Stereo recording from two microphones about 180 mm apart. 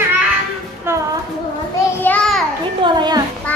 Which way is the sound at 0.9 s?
15° right (ahead or behind).